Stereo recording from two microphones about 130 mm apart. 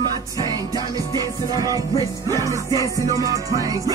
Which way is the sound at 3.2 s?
25° right (ahead or behind).